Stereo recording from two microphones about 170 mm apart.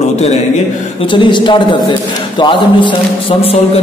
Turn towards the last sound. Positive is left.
turn(degrees=30)  # may be behind; listen again after turning